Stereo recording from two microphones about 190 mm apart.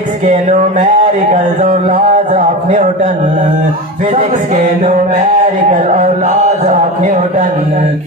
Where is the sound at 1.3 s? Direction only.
40° right (ahead or behind).